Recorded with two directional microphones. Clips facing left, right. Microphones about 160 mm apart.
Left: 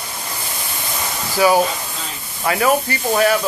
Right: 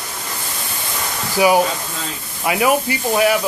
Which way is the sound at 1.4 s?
15° right (ahead or behind).